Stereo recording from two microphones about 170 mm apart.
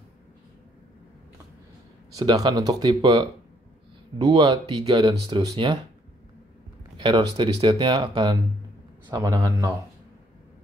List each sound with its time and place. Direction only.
2.1 s speech: 20° right (ahead or behind)
7.0 s speech: 30° right (ahead or behind)